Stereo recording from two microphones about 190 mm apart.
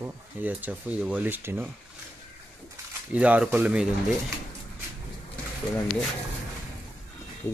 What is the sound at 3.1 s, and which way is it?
Speech, 5° right (ahead or behind).